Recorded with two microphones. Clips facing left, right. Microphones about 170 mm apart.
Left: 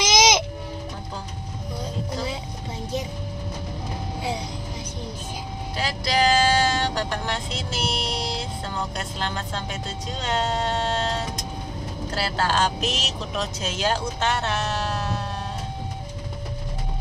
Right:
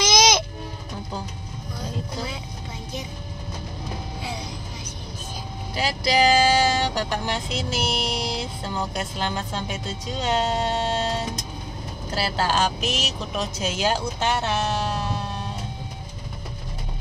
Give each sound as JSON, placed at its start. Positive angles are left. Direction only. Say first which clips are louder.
{"t": 0.0, "sound": "music", "louder": "even", "side_deg": 20}
{"t": 5.8, "sound": "vehicle", "louder": "right 2 dB", "side_deg": -5}
{"t": 10.2, "sound": "music", "louder": "right 2 dB", "side_deg": -10}
{"t": 12.2, "sound": "speech", "louder": "even", "side_deg": -10}